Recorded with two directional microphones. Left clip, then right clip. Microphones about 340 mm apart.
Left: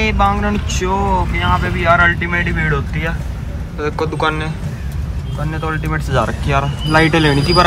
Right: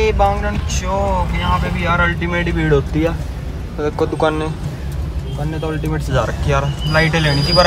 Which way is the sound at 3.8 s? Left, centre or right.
Centre.